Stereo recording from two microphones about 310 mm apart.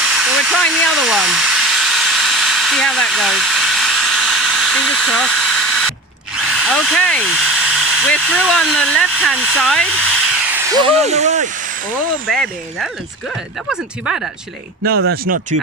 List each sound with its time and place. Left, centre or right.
0.0 s hair dryer: centre
10.7 s speech: centre
12.3 s speech: centre
15.2 s speech: right